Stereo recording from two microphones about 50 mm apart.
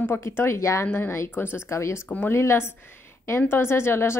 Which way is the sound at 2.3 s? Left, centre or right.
Left.